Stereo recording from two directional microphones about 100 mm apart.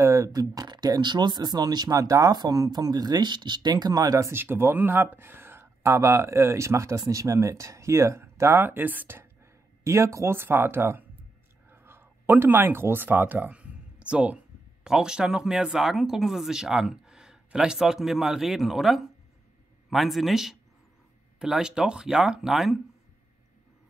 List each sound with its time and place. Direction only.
0.0 s speech: 30° right (ahead or behind)
4.3 s speech: 25° right (ahead or behind); by 22.8 s centre (ahead or behind)